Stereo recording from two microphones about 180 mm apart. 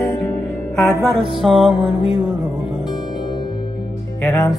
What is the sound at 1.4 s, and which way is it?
Music, centre (ahead or behind).